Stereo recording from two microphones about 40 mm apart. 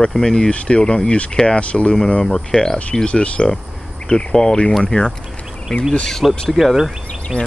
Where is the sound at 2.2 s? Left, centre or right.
Centre.